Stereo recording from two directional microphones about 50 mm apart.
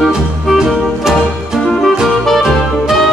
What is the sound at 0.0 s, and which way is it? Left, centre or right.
Music, centre.